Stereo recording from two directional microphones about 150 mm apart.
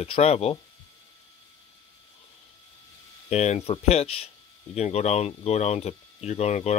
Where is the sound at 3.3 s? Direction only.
50° left (ahead or behind).